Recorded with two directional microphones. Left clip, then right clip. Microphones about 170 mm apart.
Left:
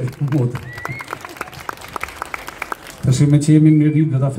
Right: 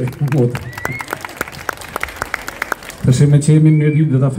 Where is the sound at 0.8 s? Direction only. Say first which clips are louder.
Right 5 dB; 40° right (ahead or behind).